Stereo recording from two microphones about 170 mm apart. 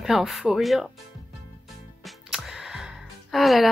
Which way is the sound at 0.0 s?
Centre (ahead or behind).